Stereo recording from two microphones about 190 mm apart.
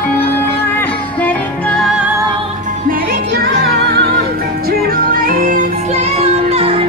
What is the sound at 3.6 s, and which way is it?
Music, 55° right (ahead or behind).